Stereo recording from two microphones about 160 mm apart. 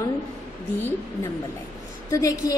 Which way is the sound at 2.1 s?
20° left (ahead or behind).